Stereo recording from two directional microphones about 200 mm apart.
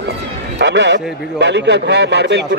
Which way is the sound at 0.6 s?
60° right (ahead or behind).